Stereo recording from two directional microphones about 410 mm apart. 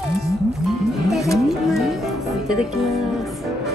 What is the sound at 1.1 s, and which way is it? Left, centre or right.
Music, centre.